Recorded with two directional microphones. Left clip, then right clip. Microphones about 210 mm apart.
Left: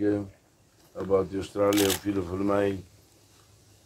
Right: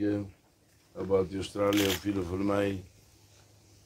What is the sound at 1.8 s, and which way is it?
Speech, 30° left (ahead or behind).